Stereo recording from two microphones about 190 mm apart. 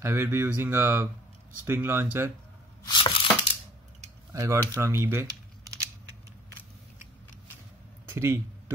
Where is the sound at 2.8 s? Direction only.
25° left (ahead or behind).